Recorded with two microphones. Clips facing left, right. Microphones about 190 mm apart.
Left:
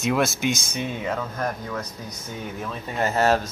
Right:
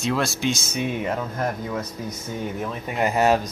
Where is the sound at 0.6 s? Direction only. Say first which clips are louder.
Right 3 dB; 10° right (ahead or behind).